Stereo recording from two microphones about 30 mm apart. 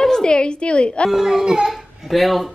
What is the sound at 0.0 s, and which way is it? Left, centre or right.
A woman's voice, left.